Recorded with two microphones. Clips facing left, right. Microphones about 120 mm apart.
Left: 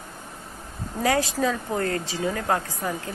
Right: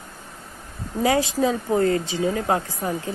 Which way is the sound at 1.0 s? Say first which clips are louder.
Right 3 dB; 20° right (ahead or behind).